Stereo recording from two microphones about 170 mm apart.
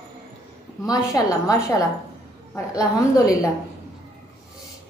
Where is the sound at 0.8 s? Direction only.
20° left (ahead or behind).